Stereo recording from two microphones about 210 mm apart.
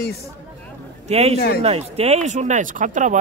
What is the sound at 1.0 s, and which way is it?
A man's voice, 30° right (ahead or behind).